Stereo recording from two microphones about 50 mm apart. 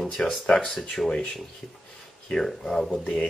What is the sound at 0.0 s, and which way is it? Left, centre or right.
Speech, centre.